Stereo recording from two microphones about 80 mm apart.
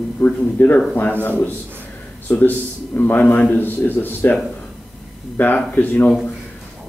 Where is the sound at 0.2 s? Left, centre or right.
Left.